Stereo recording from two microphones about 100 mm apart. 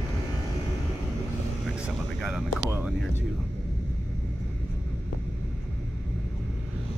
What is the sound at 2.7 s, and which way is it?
Speech, 20° right (ahead or behind).